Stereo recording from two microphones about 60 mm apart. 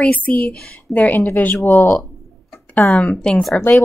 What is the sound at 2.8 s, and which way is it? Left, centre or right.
Speech, centre.